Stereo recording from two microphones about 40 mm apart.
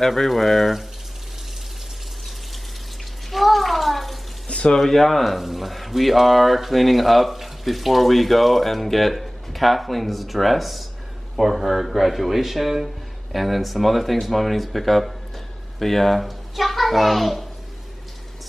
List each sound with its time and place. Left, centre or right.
0.0 s speech: centre
3.3 s bathtub: centre
4.5 s a sound: left
4.7 s a child's voice: centre